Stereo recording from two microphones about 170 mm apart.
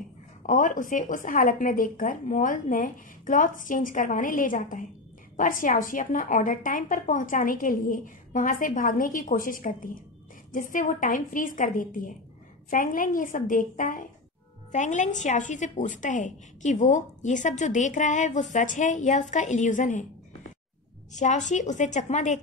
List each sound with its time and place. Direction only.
0.4 s a woman's voice: 50° left (ahead or behind)
21.1 s a woman's voice: 45° left (ahead or behind)